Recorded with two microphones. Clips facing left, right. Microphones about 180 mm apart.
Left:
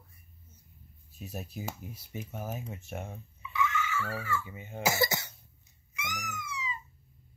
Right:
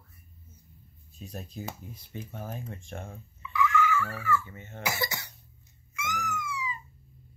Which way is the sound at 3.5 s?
25° left (ahead or behind).